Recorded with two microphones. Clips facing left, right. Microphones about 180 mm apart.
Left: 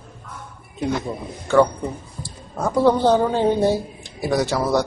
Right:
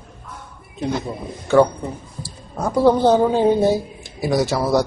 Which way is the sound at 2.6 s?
10° right (ahead or behind).